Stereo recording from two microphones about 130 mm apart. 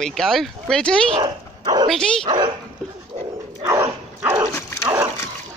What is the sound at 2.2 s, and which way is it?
Speech, 35° right (ahead or behind).